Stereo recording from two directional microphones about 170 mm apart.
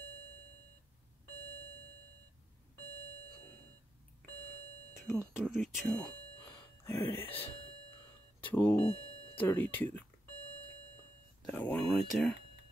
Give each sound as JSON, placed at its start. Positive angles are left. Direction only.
{"t": 5.0, "sound": "speech", "side_deg": 0}
{"t": 8.4, "sound": "a sound", "side_deg": 10}
{"t": 9.3, "sound": "speech", "side_deg": 10}
{"t": 11.4, "sound": "speech", "side_deg": 10}